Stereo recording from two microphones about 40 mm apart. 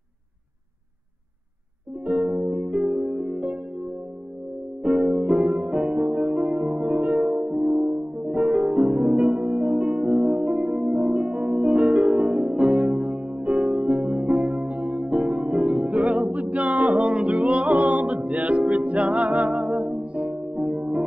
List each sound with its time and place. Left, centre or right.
2.0 s music: right